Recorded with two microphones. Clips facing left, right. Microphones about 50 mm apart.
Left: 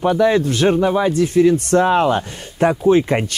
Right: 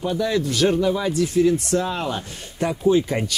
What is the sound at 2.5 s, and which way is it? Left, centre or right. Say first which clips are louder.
Speech: left 5 dB; left.